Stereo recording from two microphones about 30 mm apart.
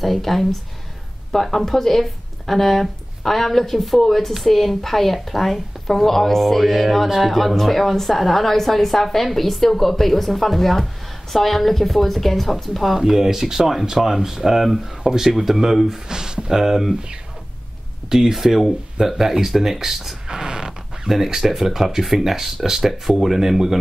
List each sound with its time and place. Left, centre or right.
0.0 s a woman's voice: centre
12.9 s speech: centre
16.1 s speech: right
18.1 s speech: centre
20.2 s a sound: right
21.5 s speech: centre
23.0 s speech: centre